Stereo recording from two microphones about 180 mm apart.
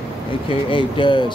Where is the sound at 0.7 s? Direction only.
25° left (ahead or behind).